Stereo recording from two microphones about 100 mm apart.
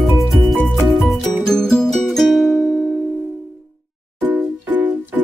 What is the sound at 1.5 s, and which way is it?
Music, 5° left (ahead or behind).